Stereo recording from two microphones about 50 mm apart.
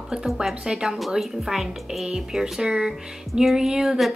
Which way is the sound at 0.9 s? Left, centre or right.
Centre.